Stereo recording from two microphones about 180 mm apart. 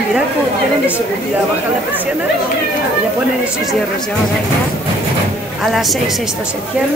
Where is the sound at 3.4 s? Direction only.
Centre (ahead or behind).